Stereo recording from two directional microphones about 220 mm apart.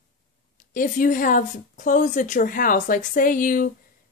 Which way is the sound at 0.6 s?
35° left (ahead or behind).